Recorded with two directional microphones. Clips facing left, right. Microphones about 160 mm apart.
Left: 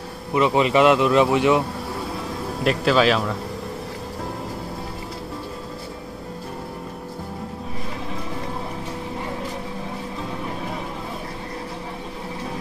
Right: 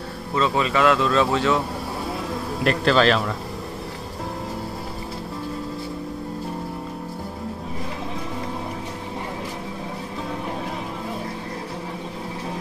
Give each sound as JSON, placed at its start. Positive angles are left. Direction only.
{"t": 0.3, "sound": "speech", "side_deg": 20}
{"t": 2.6, "sound": "a man's voice", "side_deg": 5}